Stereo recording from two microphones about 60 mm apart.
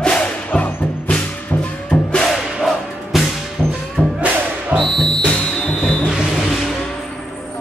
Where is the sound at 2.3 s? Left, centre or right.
Centre.